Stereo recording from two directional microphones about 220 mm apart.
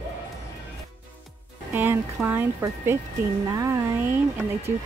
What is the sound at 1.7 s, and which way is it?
Speech, 10° right (ahead or behind).